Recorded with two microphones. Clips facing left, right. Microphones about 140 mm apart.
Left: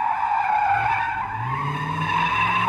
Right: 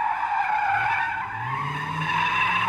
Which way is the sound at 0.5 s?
35° left (ahead or behind).